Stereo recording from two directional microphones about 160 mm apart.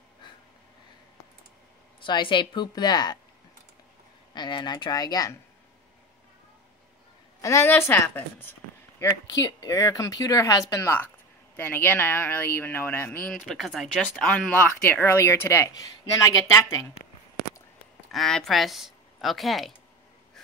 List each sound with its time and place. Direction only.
2.0 s speech: 30° left (ahead or behind)
4.3 s speech: 30° left (ahead or behind)
7.4 s speech: 20° left (ahead or behind)
9.0 s speech: 25° left (ahead or behind)
13.3 s speech: centre (ahead or behind); by 16.9 s 20° left (ahead or behind)
18.1 s speech: centre (ahead or behind)